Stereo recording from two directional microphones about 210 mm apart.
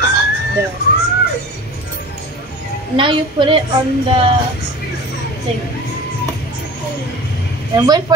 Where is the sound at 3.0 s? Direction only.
25° right (ahead or behind).